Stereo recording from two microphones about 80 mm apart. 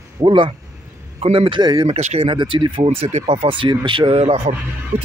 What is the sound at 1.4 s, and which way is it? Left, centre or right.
Speech, right.